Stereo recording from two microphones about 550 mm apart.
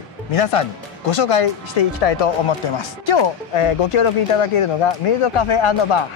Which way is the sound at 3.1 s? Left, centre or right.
Left.